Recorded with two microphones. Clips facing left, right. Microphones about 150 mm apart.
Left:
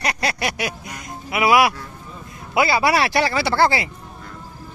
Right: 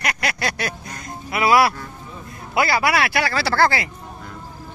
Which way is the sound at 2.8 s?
30° left (ahead or behind).